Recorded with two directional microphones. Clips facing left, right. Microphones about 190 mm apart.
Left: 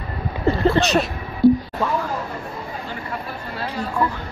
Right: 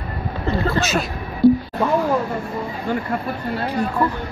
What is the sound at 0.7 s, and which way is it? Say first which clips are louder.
Speech: left 3 dB; centre (ahead or behind).